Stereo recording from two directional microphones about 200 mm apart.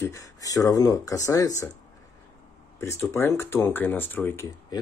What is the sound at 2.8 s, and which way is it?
Speech, 15° left (ahead or behind).